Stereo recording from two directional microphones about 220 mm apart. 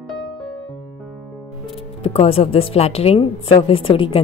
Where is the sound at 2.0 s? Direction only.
25° left (ahead or behind).